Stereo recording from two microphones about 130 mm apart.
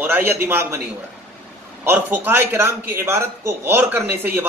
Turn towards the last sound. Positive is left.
turn(degrees=-15)  # may be behind; listen again after turning